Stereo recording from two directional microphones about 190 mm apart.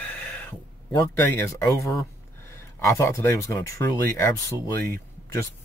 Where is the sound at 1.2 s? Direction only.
15° left (ahead or behind).